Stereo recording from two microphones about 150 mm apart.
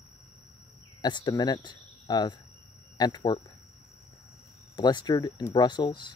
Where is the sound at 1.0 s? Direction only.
30° left (ahead or behind).